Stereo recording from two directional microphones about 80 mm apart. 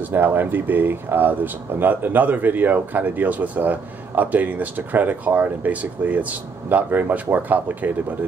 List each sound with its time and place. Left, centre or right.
0.1 s speech: right